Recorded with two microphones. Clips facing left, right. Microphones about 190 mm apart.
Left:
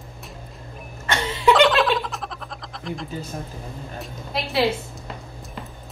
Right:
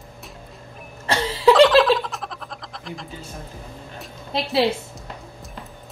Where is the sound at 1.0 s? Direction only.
35° right (ahead or behind).